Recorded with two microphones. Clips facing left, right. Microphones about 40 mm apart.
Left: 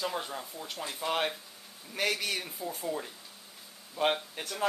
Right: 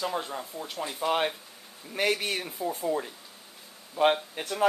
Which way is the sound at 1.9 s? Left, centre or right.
Right.